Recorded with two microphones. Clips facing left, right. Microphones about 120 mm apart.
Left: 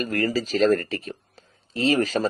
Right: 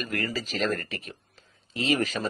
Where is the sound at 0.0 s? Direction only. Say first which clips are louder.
Left 7 dB; 35° left (ahead or behind).